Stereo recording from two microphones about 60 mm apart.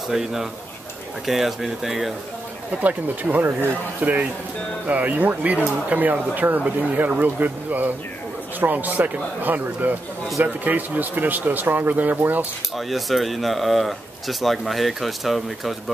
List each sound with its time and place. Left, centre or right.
0.1 s speech: centre
2.8 s a man's voice: right
12.7 s speech: centre